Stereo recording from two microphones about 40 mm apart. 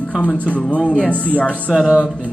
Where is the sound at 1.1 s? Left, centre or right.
Left.